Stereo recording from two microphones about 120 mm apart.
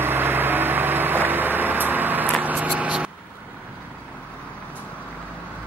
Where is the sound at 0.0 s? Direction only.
20° right (ahead or behind).